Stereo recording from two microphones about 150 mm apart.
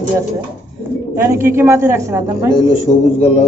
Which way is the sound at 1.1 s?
20° right (ahead or behind).